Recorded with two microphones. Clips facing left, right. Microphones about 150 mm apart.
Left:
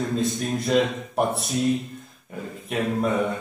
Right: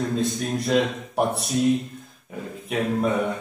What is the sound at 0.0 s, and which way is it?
Speech, centre (ahead or behind).